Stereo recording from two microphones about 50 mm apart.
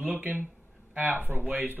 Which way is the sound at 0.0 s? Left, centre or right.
Right.